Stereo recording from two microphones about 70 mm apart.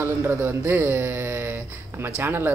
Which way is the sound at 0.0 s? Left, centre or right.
Right.